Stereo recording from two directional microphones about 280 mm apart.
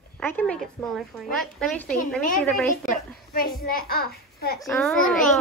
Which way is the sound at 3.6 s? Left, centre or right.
Left.